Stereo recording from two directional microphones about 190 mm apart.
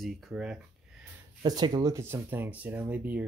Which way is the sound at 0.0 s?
Centre (ahead or behind).